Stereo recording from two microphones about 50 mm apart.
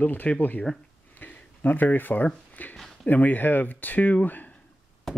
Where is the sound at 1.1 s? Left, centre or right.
Left.